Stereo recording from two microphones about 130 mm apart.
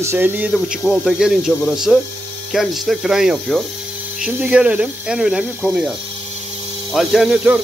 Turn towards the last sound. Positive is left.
turn(degrees=-5)  # may be behind; listen again after turning